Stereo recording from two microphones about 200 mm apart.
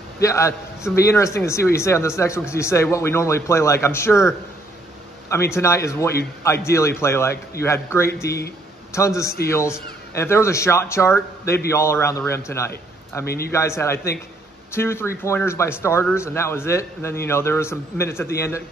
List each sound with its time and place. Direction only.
0.2 s speech: 15° left (ahead or behind)
5.6 s speech: 15° left (ahead or behind)